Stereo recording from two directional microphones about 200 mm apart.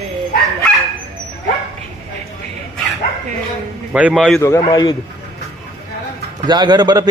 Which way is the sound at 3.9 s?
5° right (ahead or behind).